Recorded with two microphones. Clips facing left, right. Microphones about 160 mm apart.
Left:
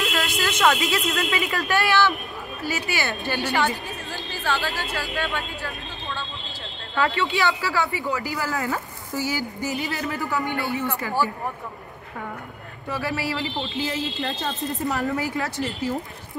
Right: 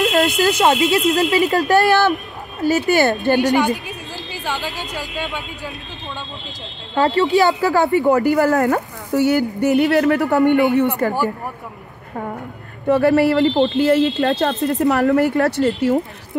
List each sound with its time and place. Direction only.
0.0 s speech: 40° right (ahead or behind)
3.5 s speech: 15° right (ahead or behind)
7.0 s speech: 40° right (ahead or behind); by 10.6 s 65° right (ahead or behind)
11.0 s speech: 50° right (ahead or behind)
12.8 s speech: 55° right (ahead or behind)